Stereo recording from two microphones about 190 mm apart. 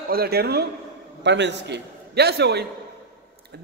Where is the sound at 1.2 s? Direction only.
65° right (ahead or behind).